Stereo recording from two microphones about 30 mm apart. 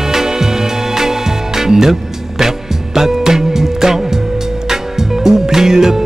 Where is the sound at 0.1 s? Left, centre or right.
Centre.